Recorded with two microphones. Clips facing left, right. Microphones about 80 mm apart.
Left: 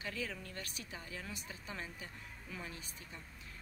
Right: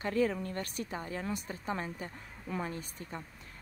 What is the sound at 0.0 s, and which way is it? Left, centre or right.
A woman's voice, right.